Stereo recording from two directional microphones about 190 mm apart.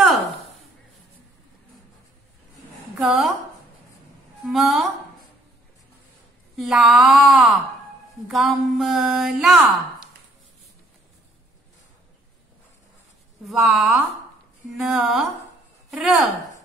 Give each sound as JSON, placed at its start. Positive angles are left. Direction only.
{"t": 3.0, "sound": "speech", "side_deg": 0}
{"t": 4.5, "sound": "speech", "side_deg": 0}
{"t": 6.5, "sound": "speech", "side_deg": 0}
{"t": 13.5, "sound": "speech", "side_deg": 0}